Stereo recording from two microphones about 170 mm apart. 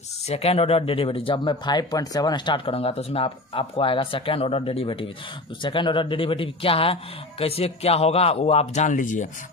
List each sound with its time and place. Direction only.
0.3 s speech: 35° left (ahead or behind)